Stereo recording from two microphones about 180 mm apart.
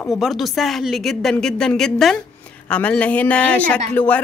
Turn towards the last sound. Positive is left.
turn(degrees=10)  # may be behind; listen again after turning